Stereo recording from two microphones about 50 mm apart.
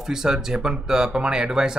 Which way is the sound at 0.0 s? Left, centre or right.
Centre.